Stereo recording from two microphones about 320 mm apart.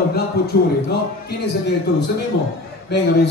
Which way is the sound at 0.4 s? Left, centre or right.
Left.